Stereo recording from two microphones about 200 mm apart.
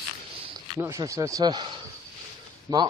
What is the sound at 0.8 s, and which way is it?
A man's voice, 15° right (ahead or behind).